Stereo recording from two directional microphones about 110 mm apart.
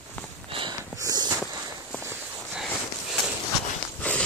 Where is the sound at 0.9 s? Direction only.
35° right (ahead or behind).